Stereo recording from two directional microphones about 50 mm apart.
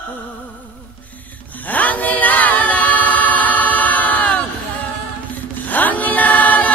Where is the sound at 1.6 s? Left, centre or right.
Left.